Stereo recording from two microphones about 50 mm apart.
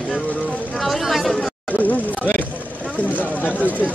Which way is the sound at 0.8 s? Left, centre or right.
Centre.